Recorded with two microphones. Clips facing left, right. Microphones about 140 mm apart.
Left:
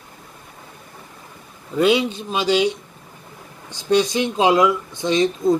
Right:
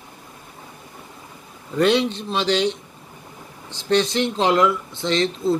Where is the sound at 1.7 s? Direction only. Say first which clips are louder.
Left 1 dB; 10° left (ahead or behind).